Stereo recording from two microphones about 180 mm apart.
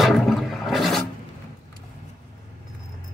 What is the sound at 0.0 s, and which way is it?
Toilet flush, centre (ahead or behind).